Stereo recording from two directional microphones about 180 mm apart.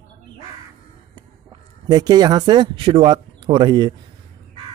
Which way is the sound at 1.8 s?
25° right (ahead or behind).